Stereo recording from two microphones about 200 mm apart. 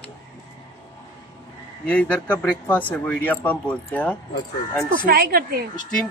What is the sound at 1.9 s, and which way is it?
Speech, 5° left (ahead or behind).